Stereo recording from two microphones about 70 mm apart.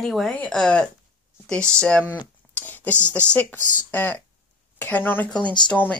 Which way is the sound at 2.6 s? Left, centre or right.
Left.